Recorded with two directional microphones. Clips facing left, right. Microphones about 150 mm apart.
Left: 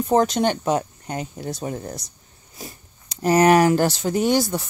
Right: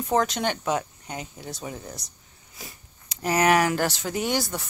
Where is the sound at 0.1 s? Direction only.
35° left (ahead or behind).